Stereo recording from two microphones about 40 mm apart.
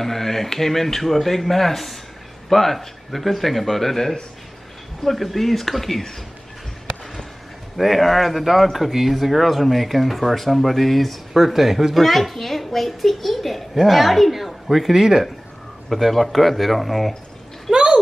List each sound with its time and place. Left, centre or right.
0.0 s speech: centre
7.7 s speech: centre
15.9 s speech: centre
17.6 s a sound: centre